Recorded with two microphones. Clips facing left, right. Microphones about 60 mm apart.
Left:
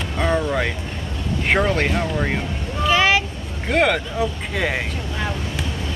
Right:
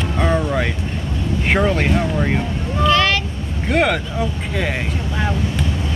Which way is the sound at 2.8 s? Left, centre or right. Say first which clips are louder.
Right 1 dB; centre.